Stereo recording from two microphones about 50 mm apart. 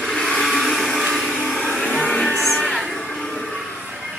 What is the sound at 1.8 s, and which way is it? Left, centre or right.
Music, centre.